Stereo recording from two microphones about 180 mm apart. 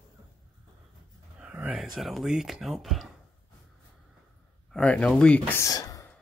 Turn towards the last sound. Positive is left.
turn(degrees=20)  # may be behind; listen again after turning